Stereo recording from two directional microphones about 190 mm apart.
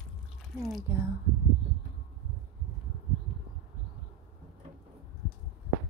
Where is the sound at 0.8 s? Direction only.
15° right (ahead or behind).